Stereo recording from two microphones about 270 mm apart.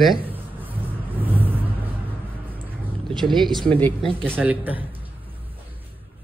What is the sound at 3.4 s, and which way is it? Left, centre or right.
Speech, centre.